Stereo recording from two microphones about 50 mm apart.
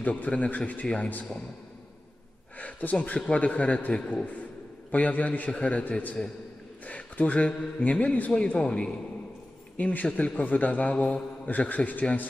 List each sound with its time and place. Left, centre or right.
0.0 s a man's voice: left
2.6 s a man's voice: left
8.5 s a man's voice: centre
9.8 s a man's voice: left